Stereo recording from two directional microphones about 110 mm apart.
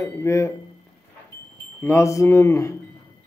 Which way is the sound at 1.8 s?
25° left (ahead or behind).